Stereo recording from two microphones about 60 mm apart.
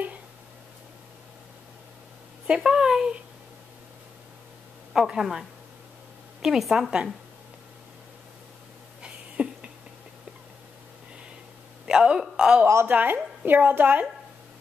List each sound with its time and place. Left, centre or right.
2.4 s a woman's voice: centre
4.9 s a woman's voice: centre
9.0 s a sound: centre
11.8 s a woman's voice: centre
12.8 s a woman's voice: right